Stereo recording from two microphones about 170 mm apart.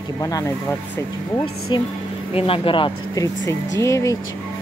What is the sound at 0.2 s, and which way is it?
Speech, 20° left (ahead or behind).